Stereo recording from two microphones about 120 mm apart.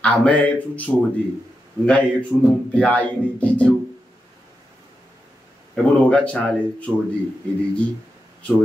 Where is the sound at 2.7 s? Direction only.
10° left (ahead or behind).